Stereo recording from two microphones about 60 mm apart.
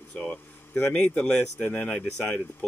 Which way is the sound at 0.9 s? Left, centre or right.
Left.